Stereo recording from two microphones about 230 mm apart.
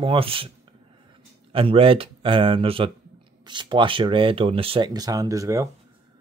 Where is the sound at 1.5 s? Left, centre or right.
Right.